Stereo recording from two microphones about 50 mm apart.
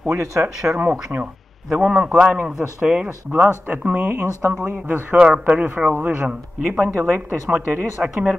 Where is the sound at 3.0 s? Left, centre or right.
Right.